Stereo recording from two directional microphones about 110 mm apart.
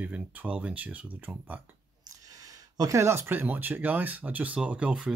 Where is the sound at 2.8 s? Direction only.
25° right (ahead or behind).